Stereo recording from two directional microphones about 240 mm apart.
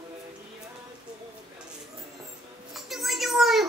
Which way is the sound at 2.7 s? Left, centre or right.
Centre.